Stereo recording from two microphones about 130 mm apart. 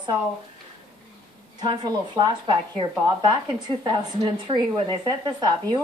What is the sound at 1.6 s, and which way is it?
Speech, 35° right (ahead or behind).